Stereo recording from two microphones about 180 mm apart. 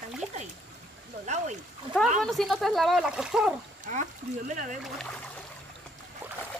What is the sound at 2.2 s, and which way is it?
Speech, centre (ahead or behind).